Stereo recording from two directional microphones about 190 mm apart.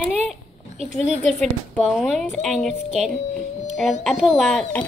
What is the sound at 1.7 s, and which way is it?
A child's voice, centre (ahead or behind).